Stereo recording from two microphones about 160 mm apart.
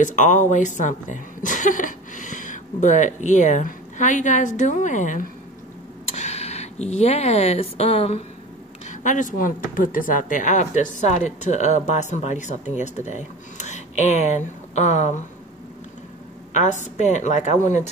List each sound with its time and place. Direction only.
0.0 s a woman's voice: 50° left (ahead or behind)
8.8 s speech: 50° left (ahead or behind)
16.5 s speech: 50° left (ahead or behind)